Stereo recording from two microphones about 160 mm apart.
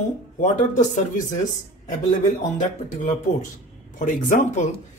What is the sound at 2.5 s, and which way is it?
Speech, 50° left (ahead or behind).